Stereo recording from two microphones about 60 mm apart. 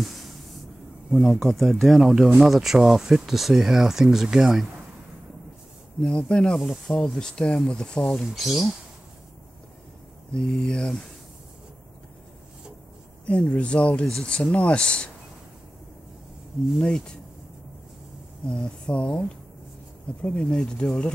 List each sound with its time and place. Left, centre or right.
1.1 s speech: centre
5.9 s speech: centre
8.1 s speech: centre
10.3 s speech: centre
13.2 s speech: left
16.8 s speech: centre
18.5 s speech: centre
20.2 s speech: left